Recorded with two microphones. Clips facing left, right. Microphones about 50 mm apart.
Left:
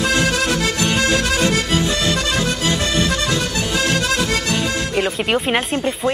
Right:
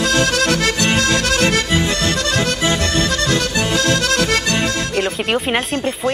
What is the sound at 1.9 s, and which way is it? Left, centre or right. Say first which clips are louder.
Accordion: right 1 dB; right.